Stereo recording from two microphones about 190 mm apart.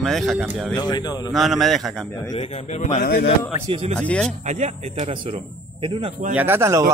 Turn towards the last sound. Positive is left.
turn(degrees=-15)  # may be behind; listen again after turning